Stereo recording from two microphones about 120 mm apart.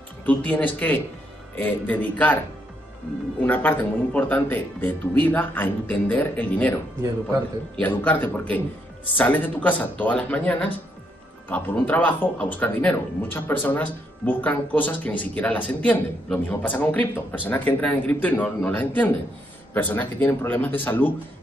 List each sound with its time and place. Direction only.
0.2 s speech: 15° left (ahead or behind)
3.4 s speech: 15° left (ahead or behind)
7.8 s speech: 15° left (ahead or behind)